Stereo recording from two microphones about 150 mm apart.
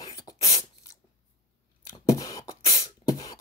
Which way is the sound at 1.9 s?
20° left (ahead or behind).